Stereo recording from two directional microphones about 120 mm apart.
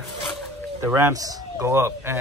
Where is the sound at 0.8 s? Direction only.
20° right (ahead or behind).